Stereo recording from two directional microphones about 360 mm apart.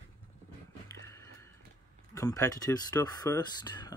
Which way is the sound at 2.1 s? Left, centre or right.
Centre.